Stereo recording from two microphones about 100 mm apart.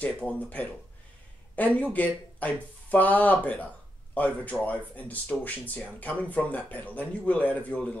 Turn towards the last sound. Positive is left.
turn(degrees=15)  # may be behind; listen again after turning